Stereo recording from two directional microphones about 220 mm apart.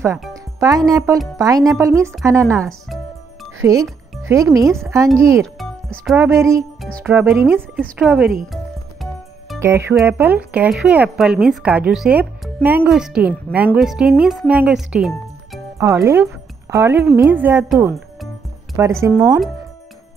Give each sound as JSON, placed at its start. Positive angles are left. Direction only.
{"t": 0.6, "sound": "speech", "side_deg": -15}
{"t": 1.1, "sound": "speech", "side_deg": 0}
{"t": 1.4, "sound": "speech", "side_deg": -15}
{"t": 3.6, "sound": "speech", "side_deg": -15}
{"t": 4.6, "sound": "speech", "side_deg": 0}
{"t": 5.4, "sound": "music", "side_deg": 0}
{"t": 6.2, "sound": "speech", "side_deg": -10}
{"t": 9.6, "sound": "speech", "side_deg": -10}
{"t": 15.8, "sound": "speech", "side_deg": -15}